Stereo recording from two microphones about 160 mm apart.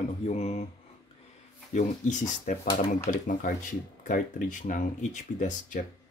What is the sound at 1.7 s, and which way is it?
Speech, 50° left (ahead or behind).